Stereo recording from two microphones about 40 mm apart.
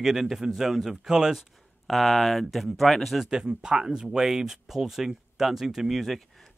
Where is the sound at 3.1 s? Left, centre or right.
Centre.